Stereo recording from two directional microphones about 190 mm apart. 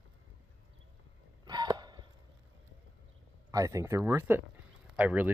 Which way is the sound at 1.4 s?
20° right (ahead or behind).